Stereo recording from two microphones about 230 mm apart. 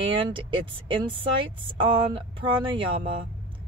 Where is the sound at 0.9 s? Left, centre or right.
Right.